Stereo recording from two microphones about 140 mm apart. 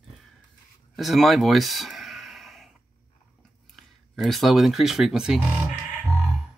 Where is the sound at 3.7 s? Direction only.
Centre (ahead or behind).